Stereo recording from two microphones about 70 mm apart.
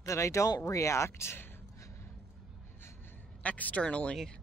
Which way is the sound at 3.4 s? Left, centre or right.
Left.